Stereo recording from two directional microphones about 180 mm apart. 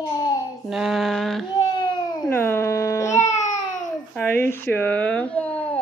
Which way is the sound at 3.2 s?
40° left (ahead or behind).